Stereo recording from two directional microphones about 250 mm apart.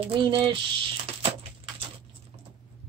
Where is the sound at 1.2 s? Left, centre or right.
Right.